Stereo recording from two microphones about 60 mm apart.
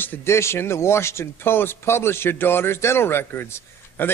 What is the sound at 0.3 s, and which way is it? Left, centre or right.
A man's voice, left.